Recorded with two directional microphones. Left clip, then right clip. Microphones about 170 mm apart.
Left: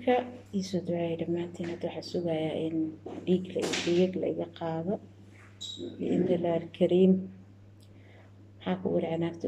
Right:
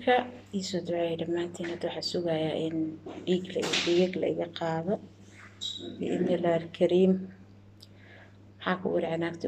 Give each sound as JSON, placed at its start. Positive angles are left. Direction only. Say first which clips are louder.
{"t": 0.0, "sound": "a woman's voice", "louder": "right 2 dB", "side_deg": 15}
{"t": 5.9, "sound": "a woman's voice", "louder": "left 1 dB", "side_deg": 10}
{"t": 8.5, "sound": "a woman's voice", "louder": "right 2 dB", "side_deg": 10}